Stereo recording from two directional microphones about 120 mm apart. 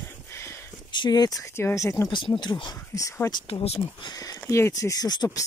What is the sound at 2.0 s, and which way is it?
Speech, 40° left (ahead or behind).